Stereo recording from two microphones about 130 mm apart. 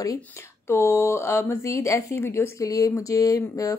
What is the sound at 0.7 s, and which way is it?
Speech, 20° left (ahead or behind).